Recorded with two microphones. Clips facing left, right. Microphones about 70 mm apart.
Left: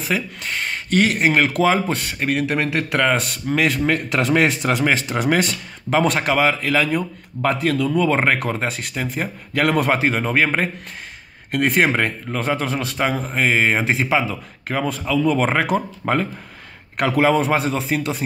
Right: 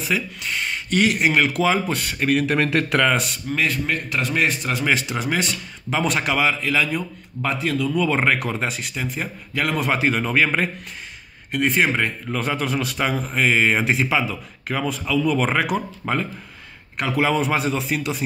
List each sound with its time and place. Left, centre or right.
0.0 s a man's voice: left
2.5 s speech: centre
3.5 s a man's voice: left
4.8 s a man's voice: left
5.2 s speech: left
9.9 s a man's voice: left
11.5 s speech: left
12.3 s a man's voice: left
16.9 s a man's voice: left
17.2 s a man's voice: left